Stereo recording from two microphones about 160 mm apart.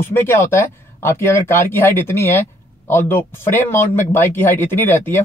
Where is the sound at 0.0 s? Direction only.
15° left (ahead or behind).